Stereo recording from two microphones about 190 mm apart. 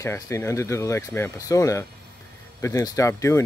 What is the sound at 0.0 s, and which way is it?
Speech, 15° left (ahead or behind).